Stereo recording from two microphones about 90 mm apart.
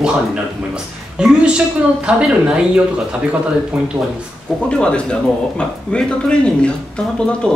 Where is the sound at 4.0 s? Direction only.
45° right (ahead or behind).